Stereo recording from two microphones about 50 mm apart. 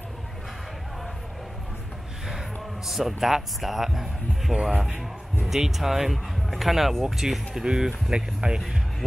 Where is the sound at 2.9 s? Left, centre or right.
Centre.